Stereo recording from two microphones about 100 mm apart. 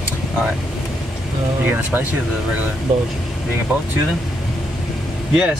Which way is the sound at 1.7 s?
15° right (ahead or behind).